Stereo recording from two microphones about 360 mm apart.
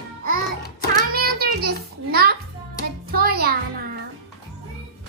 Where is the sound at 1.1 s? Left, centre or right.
Right.